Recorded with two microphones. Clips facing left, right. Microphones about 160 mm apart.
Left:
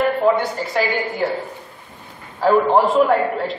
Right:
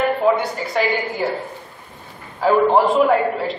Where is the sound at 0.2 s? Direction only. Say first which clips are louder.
Left 1 dB; centre (ahead or behind).